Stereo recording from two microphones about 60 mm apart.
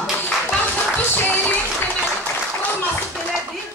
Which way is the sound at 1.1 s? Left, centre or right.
Left.